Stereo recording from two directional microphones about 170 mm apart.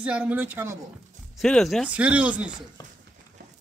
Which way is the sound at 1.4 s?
Centre (ahead or behind).